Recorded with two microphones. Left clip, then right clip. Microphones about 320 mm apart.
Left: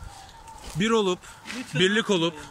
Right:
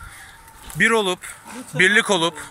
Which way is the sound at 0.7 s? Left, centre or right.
Centre.